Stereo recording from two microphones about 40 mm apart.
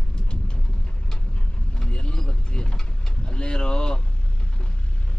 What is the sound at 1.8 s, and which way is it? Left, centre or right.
Vehicle, left.